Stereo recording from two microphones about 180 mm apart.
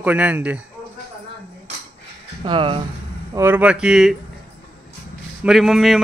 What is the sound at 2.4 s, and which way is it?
Speech, 25° right (ahead or behind).